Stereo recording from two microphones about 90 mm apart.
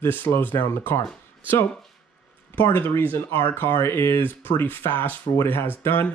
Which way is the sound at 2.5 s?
25° left (ahead or behind).